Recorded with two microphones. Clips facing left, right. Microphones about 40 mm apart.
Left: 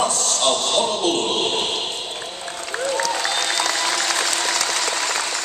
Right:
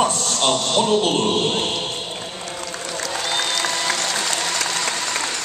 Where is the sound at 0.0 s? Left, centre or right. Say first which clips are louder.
Right 1 dB; right.